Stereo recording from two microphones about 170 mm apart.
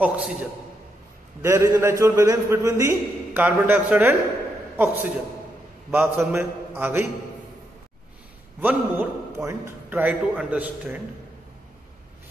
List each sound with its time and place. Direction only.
0.0 s a man's voice: 5° right (ahead or behind)
1.4 s a man's voice: 15° right (ahead or behind)
8.5 s a man's voice: 10° right (ahead or behind)